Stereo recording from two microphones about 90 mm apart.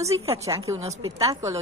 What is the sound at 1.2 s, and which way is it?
Speech, 40° right (ahead or behind).